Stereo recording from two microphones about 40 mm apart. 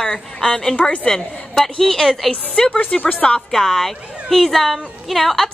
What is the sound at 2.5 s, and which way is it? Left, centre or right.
Speech, centre.